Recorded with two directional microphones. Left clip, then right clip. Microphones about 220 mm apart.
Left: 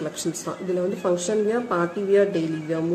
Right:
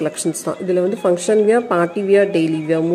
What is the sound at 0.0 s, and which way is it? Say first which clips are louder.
Speech: right 8 dB; 25° right (ahead or behind).